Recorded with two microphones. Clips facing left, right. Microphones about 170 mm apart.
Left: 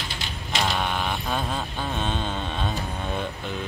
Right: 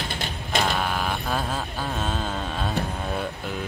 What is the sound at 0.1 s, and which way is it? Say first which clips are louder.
Typewriter: right 4 dB; 55° right (ahead or behind).